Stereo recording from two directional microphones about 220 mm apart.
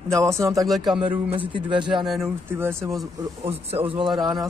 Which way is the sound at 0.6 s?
Centre (ahead or behind).